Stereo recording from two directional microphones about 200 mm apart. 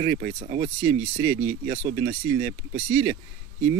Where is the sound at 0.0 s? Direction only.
30° right (ahead or behind).